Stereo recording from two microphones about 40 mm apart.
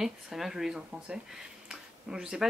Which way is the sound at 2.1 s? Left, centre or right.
Centre.